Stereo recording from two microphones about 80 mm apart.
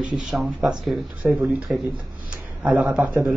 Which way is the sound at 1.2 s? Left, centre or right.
Centre.